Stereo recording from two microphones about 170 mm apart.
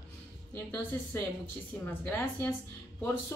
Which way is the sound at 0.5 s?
15° left (ahead or behind).